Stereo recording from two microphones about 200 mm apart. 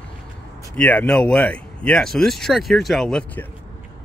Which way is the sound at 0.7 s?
10° left (ahead or behind).